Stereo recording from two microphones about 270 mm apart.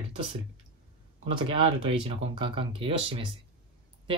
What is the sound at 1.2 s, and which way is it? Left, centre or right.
Speech, centre.